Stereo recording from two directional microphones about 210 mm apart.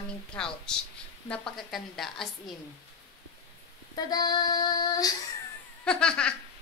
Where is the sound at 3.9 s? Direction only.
20° left (ahead or behind).